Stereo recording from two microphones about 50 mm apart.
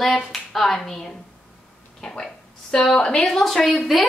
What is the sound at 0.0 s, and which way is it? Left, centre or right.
A woman's voice, centre.